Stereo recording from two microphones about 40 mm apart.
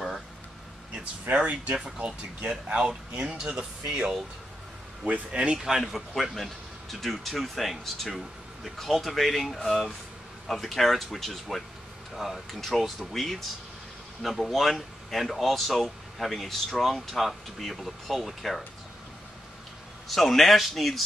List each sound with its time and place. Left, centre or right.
1.3 s speech: right
5.6 s a man's voice: centre
6.1 s speech: centre
20.1 s speech: centre